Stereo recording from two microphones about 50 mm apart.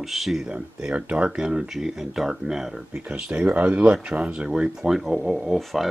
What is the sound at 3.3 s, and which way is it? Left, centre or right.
Speech, right.